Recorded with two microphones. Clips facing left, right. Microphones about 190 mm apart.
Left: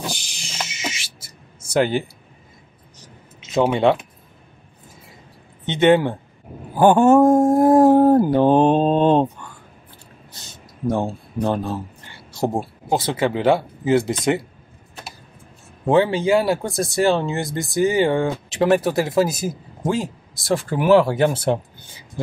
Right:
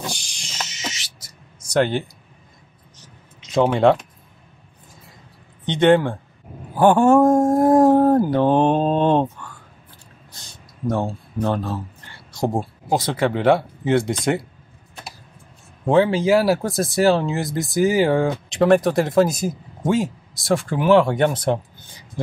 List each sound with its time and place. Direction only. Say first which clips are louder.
0.0 s a sound: left 1 dB; 5° left (ahead or behind)
1.7 s speech: even; 5° left (ahead or behind)
3.3 s speech: even; 5° left (ahead or behind)
5.7 s speech: even; 5° left (ahead or behind)
10.9 s speech: left 1 dB; 10° left (ahead or behind)
15.8 s speech: even; centre (ahead or behind)